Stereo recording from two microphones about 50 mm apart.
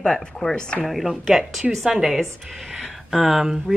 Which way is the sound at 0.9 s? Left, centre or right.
Centre.